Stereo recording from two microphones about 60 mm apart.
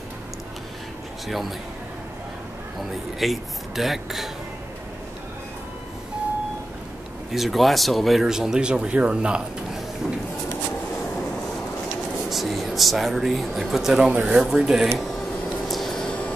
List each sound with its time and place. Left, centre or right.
1.2 s speech: centre
3.2 s speech: centre
7.3 s speech: centre
12.3 s speech: centre
14.1 s speech: right
14.4 s speech: centre
15.7 s a sound: centre